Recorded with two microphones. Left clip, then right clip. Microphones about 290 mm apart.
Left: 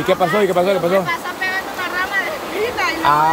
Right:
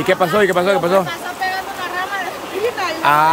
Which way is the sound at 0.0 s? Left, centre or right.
Centre.